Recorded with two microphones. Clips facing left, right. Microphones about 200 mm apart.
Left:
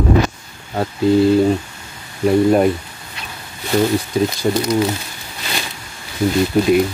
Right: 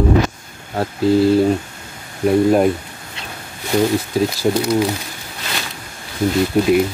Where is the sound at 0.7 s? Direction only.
Centre (ahead or behind).